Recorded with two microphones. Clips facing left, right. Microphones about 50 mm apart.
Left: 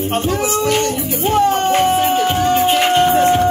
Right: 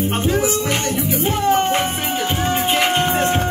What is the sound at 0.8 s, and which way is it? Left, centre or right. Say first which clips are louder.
Music: left 2 dB; right.